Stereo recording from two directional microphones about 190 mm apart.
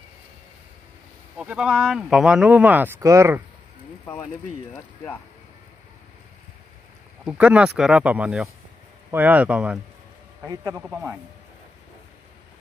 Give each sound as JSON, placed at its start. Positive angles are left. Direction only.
{"t": 1.4, "sound": "speech", "side_deg": -5}
{"t": 4.0, "sound": "speech", "side_deg": 10}
{"t": 7.2, "sound": "speech", "side_deg": -5}
{"t": 10.4, "sound": "speech", "side_deg": -20}